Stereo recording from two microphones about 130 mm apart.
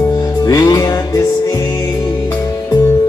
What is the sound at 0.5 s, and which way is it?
Music, 30° left (ahead or behind).